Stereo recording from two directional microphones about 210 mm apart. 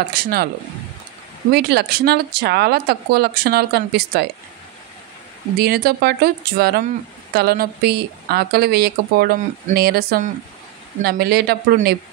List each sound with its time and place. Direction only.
0.1 s speech: 45° right (ahead or behind)
1.5 s speech: 50° right (ahead or behind)
5.6 s speech: 50° right (ahead or behind)